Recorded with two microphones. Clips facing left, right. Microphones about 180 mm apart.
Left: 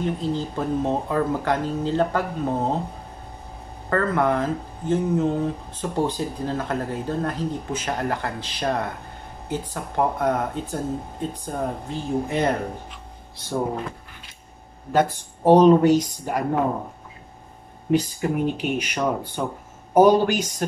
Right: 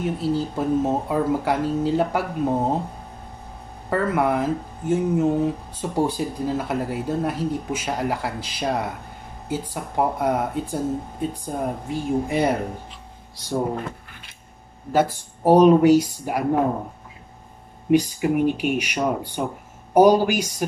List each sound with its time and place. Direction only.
0.0 s speech: 10° right (ahead or behind)
3.9 s speech: 10° right (ahead or behind)
14.9 s speech: 5° right (ahead or behind)
17.9 s speech: 10° right (ahead or behind)